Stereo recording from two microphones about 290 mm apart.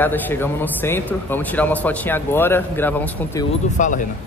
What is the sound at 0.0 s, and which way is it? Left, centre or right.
A man's voice, centre.